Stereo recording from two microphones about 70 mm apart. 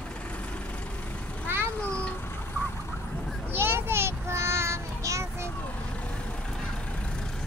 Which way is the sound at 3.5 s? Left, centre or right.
Right.